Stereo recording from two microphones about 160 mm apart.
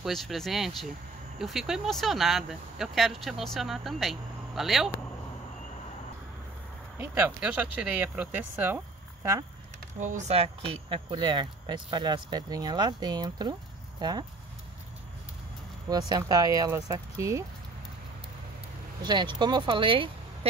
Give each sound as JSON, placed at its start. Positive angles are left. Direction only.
{"t": 0.0, "sound": "speech", "side_deg": 0}
{"t": 7.0, "sound": "speech", "side_deg": -10}
{"t": 9.9, "sound": "speech", "side_deg": -50}
{"t": 15.9, "sound": "speech", "side_deg": -25}
{"t": 19.0, "sound": "speech", "side_deg": -30}